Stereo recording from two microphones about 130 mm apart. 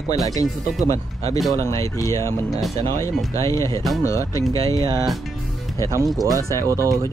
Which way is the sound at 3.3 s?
25° left (ahead or behind).